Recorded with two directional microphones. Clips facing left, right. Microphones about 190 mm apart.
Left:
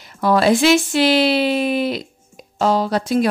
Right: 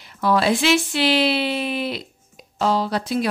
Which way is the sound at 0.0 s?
45° left (ahead or behind).